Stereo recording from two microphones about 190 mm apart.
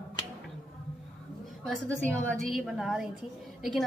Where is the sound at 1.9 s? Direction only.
10° left (ahead or behind).